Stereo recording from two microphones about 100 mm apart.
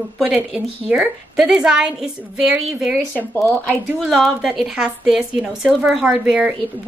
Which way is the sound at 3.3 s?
15° left (ahead or behind).